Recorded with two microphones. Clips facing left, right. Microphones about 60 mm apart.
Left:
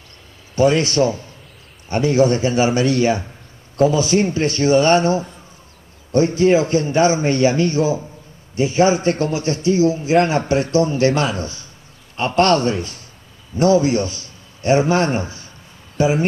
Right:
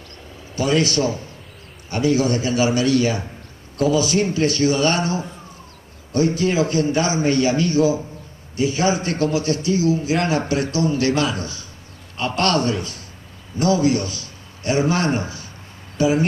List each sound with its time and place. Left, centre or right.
0.6 s a man's voice: left